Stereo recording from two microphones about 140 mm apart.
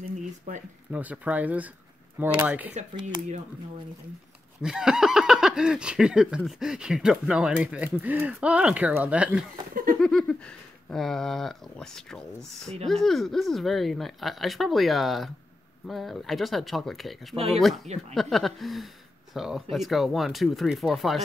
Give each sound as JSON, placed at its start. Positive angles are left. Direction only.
{"t": 0.0, "sound": "a sound", "side_deg": -65}
{"t": 0.9, "sound": "speech", "side_deg": -10}
{"t": 4.6, "sound": "speech", "side_deg": -5}
{"t": 9.9, "sound": "speech", "side_deg": 5}